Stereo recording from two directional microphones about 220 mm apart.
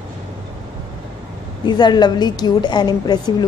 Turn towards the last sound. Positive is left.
turn(degrees=20)  # may be behind; listen again after turning